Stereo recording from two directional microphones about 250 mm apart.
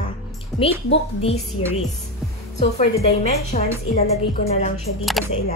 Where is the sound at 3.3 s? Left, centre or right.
Left.